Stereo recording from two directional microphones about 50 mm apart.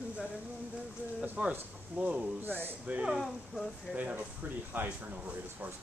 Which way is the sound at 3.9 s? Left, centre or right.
Right.